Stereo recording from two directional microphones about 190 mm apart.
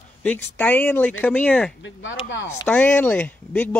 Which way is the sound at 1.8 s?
85° left.